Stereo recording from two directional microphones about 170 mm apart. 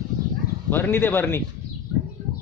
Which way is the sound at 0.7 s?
10° left (ahead or behind).